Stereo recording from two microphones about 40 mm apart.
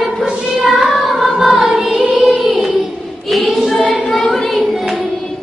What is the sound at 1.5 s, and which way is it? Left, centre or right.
Music, centre.